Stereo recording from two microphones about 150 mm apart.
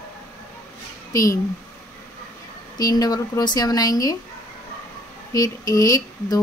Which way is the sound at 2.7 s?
25° left (ahead or behind).